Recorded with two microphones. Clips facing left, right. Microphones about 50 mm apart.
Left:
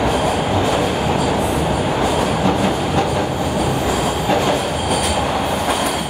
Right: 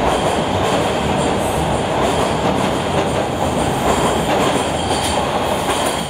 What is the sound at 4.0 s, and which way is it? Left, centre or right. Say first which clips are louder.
Train: right 3 dB; right.